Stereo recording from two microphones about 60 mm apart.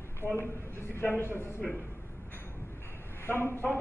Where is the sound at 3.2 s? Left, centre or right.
Left.